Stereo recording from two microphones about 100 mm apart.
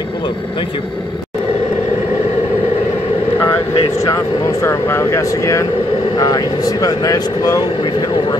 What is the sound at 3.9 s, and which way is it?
Speech, 35° left (ahead or behind).